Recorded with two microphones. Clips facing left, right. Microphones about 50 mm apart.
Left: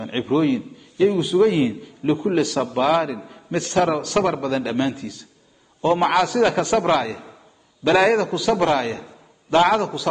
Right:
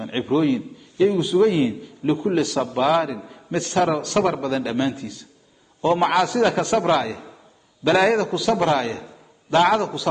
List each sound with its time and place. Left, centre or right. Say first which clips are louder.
0.0 s a man's voice: left 1 dB; centre